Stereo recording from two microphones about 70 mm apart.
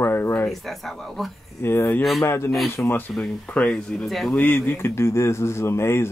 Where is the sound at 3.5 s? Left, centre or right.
Centre.